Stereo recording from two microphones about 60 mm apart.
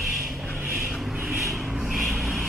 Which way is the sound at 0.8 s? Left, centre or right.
Centre.